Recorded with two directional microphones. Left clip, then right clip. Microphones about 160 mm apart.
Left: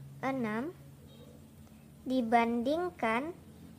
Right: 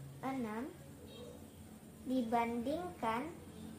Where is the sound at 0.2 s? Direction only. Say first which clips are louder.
Left 7 dB; 55° left (ahead or behind).